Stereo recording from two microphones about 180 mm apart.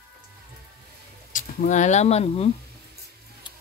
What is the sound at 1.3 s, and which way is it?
Speech, 45° left (ahead or behind).